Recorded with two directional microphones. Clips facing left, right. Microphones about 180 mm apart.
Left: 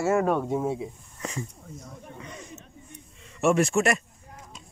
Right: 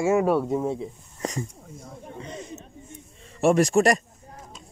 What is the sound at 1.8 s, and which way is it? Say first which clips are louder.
Snake: right 6 dB; 30° right (ahead or behind).